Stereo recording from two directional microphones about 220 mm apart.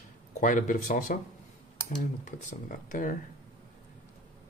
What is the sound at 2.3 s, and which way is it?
Speech, 35° left (ahead or behind).